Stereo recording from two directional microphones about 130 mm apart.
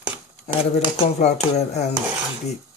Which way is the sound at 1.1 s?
60° left (ahead or behind).